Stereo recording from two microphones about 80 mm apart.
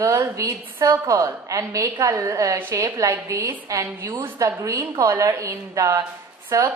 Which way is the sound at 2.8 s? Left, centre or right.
Right.